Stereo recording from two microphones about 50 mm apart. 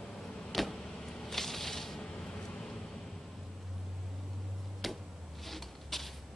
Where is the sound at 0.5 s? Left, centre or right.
Centre.